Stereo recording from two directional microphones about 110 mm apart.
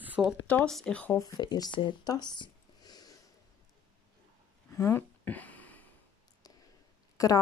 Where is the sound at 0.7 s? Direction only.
5° left (ahead or behind).